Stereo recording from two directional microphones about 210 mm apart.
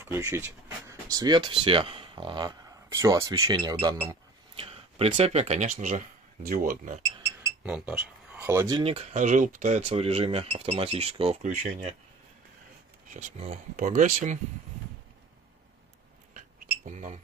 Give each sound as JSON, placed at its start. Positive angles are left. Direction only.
{"t": 0.0, "sound": "speech", "side_deg": -15}
{"t": 7.6, "sound": "speech", "side_deg": -5}
{"t": 13.1, "sound": "speech", "side_deg": -35}
{"t": 16.3, "sound": "a sound", "side_deg": -35}